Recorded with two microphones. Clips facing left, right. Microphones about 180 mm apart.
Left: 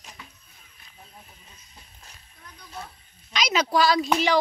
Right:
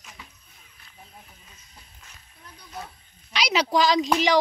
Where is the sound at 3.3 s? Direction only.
15° right (ahead or behind).